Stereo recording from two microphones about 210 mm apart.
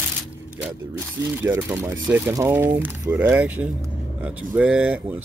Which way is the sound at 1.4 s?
10° right (ahead or behind).